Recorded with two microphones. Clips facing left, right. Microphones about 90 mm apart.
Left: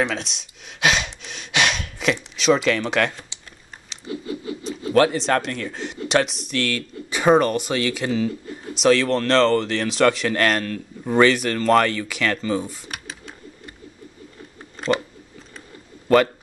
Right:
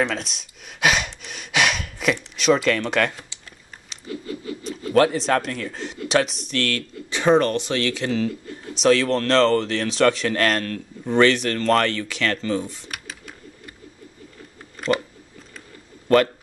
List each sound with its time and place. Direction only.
0.1 s gasp: 5° right (ahead or behind)
2.3 s speech: centre (ahead or behind)
4.1 s a sound: 20° left (ahead or behind)
4.9 s speech: centre (ahead or behind)
16.1 s speech: 5° left (ahead or behind)